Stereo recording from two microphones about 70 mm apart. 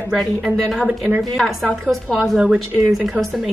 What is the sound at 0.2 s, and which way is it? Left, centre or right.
Speech, centre.